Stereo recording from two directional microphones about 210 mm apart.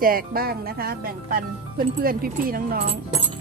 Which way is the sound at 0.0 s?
45° right (ahead or behind).